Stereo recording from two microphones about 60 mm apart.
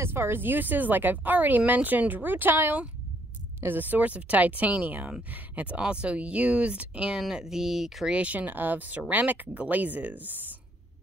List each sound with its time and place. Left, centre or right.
0.0 s speech: right; by 7.2 s centre
7.2 s speech: centre
8.1 s speech: right